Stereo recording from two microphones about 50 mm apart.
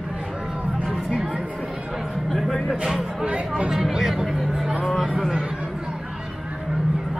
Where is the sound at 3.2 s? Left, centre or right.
Right.